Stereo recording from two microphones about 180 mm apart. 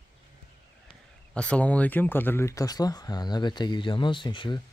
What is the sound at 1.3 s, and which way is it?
Speech, 5° left (ahead or behind).